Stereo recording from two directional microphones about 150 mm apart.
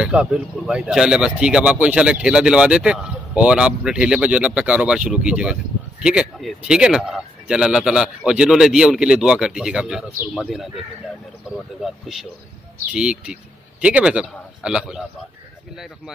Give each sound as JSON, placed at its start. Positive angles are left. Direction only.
{"t": 0.0, "sound": "a man's voice", "side_deg": -5}